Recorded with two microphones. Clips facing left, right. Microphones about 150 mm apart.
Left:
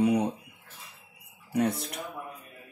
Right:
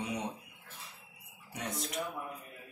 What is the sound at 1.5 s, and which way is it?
Speech, 60° left (ahead or behind).